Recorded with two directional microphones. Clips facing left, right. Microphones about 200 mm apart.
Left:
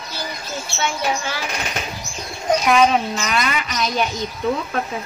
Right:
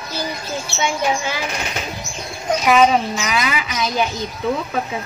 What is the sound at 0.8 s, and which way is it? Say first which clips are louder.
Speech: right 2 dB; 15° right (ahead or behind).